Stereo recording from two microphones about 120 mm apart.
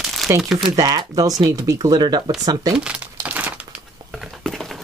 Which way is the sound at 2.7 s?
10° right (ahead or behind).